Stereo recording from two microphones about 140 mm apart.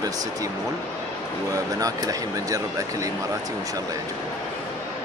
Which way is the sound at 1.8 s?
25° right (ahead or behind).